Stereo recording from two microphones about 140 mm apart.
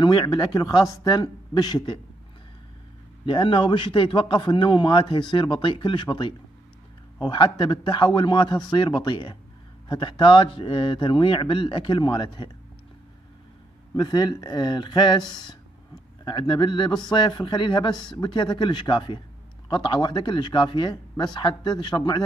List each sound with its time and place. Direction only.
0.0 s speech: 30° left (ahead or behind)
3.3 s speech: 35° left (ahead or behind)
13.9 s speech: 30° left (ahead or behind)